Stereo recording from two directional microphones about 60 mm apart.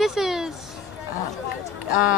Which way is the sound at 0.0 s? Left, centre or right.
Centre.